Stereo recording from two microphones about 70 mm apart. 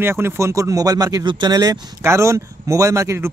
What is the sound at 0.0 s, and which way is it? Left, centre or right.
Speech, right.